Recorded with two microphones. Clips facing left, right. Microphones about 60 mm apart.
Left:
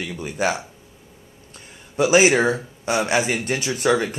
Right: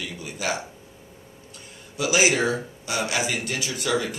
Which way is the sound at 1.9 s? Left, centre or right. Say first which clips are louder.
Left 6 dB; left.